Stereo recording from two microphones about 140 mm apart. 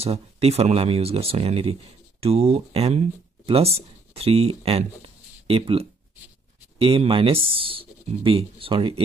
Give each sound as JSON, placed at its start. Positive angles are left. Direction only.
{"t": 0.0, "sound": "speech", "side_deg": -45}